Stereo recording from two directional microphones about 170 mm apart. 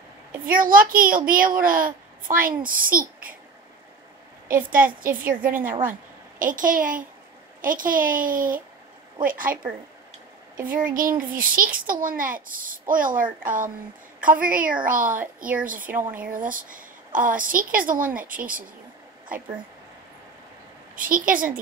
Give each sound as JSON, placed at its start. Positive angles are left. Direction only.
{"t": 0.5, "sound": "a child's voice", "side_deg": -55}
{"t": 4.6, "sound": "a woman's voice", "side_deg": -55}
{"t": 14.9, "sound": "a woman's voice", "side_deg": -55}
{"t": 20.9, "sound": "a woman's voice", "side_deg": -55}